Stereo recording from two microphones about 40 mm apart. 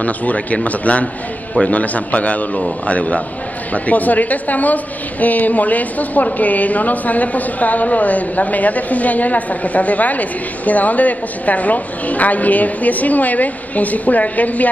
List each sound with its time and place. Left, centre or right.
0.0 s a woman's voice: left